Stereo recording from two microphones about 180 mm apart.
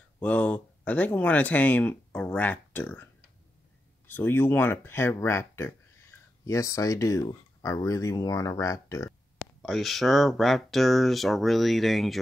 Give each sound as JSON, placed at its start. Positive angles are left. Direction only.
{"t": 0.2, "sound": "speech", "side_deg": 5}
{"t": 4.1, "sound": "speech", "side_deg": 10}
{"t": 9.6, "sound": "speech", "side_deg": 0}